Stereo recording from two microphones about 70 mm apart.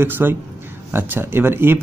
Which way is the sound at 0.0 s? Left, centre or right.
Right.